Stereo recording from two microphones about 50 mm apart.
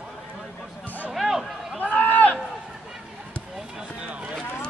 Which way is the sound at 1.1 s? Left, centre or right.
Centre.